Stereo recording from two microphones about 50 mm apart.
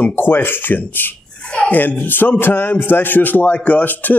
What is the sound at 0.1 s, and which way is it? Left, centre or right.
A man's voice, left.